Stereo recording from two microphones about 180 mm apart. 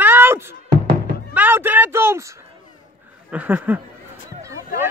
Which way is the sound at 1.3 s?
10° right (ahead or behind).